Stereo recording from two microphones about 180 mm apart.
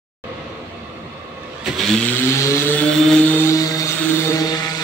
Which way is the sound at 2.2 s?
15° left (ahead or behind).